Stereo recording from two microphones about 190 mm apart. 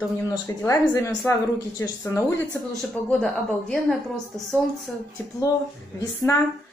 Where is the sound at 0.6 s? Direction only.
15° left (ahead or behind).